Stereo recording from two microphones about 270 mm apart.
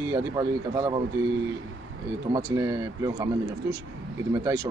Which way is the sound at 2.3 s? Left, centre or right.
Centre.